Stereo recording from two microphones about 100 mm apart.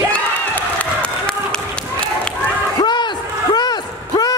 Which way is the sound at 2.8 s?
50° left (ahead or behind).